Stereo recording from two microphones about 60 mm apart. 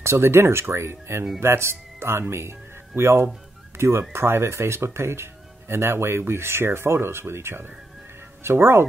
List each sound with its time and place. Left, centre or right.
0.0 s speech: right